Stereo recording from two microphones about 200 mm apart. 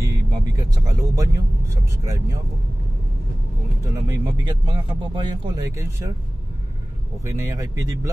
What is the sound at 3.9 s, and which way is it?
Speech, 20° right (ahead or behind).